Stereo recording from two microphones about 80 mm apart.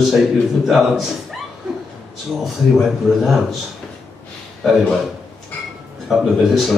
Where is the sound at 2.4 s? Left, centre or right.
Centre.